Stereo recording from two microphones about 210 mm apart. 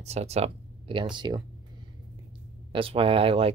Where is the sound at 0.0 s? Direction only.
30° right (ahead or behind).